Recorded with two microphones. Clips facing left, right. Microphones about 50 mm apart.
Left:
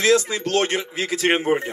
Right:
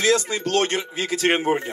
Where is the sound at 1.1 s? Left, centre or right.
Centre.